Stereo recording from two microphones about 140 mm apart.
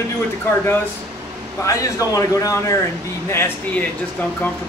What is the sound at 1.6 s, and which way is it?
A man's voice, 20° left (ahead or behind).